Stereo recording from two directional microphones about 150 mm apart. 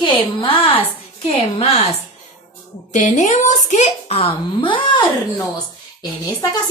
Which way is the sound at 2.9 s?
55° left (ahead or behind).